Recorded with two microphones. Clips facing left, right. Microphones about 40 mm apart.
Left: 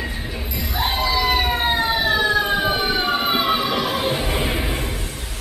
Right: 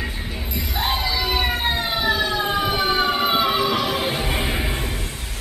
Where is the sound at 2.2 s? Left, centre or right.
Left.